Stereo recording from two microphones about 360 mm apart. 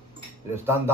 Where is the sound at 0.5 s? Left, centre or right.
Centre.